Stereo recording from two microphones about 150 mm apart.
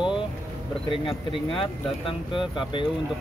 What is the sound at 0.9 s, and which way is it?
Speech, 35° left (ahead or behind).